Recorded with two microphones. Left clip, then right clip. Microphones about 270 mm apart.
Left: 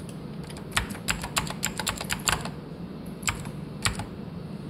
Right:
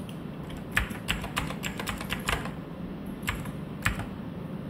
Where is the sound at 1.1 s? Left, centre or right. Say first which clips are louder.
Left 4 dB; left.